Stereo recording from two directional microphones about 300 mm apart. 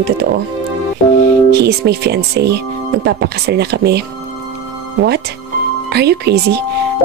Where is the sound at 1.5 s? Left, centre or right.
Right.